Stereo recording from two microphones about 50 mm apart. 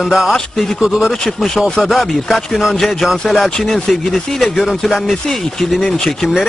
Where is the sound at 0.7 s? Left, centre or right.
Centre.